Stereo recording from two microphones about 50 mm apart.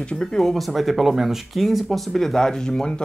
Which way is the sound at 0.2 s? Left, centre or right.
Centre.